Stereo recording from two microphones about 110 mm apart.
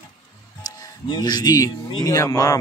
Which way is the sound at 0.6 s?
40° left (ahead or behind).